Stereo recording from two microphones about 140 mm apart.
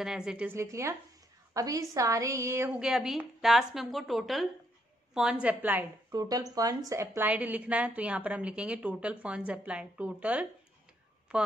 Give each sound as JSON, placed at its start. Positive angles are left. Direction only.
{"t": 0.0, "sound": "a woman's voice", "side_deg": -5}
{"t": 0.6, "sound": "a woman's voice", "side_deg": -20}
{"t": 2.8, "sound": "a woman's voice", "side_deg": 0}
{"t": 6.1, "sound": "a woman's voice", "side_deg": -25}